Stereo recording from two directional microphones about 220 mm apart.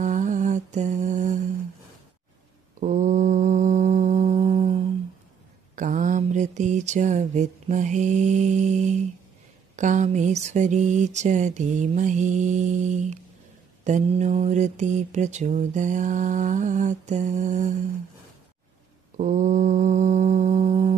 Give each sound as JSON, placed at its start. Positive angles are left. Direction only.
{"t": 0.0, "sound": "mantra", "side_deg": -35}
{"t": 2.8, "sound": "mantra", "side_deg": -35}
{"t": 19.1, "sound": "mantra", "side_deg": -35}